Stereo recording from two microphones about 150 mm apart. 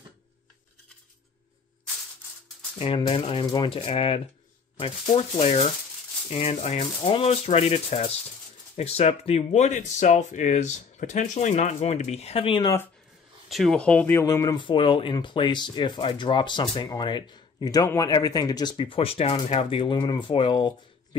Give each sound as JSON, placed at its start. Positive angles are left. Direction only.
{"t": 2.8, "sound": "speech", "side_deg": 35}
{"t": 13.5, "sound": "speech", "side_deg": 0}